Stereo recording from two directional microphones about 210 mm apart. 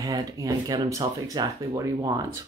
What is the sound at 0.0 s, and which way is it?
Speech, 15° right (ahead or behind).